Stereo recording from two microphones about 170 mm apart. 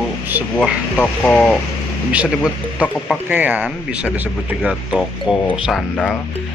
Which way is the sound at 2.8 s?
10° left (ahead or behind).